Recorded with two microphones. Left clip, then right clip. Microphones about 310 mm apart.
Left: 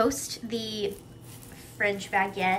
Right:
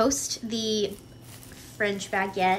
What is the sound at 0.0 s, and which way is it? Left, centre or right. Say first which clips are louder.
A woman's voice: right 2 dB; centre.